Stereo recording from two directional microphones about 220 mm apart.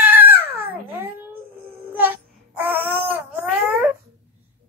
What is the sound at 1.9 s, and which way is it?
Babbling, 10° right (ahead or behind).